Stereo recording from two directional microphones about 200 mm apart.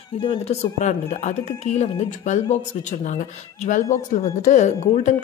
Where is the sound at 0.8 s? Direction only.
35° left (ahead or behind).